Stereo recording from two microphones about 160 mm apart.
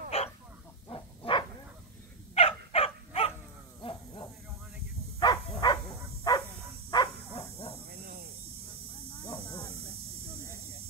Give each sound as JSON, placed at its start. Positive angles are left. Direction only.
{"t": 0.1, "sound": "chicken", "side_deg": 40}
{"t": 0.8, "sound": "dog", "side_deg": 30}
{"t": 3.8, "sound": "snake", "side_deg": 30}
{"t": 5.2, "sound": "bow-wow", "side_deg": 25}
{"t": 6.3, "sound": "dog", "side_deg": 25}
{"t": 6.9, "sound": "bow-wow", "side_deg": 30}
{"t": 7.9, "sound": "cricket", "side_deg": -70}
{"t": 9.2, "sound": "a sound", "side_deg": 25}